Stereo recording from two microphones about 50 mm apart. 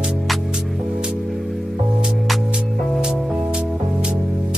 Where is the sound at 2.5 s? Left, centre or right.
Centre.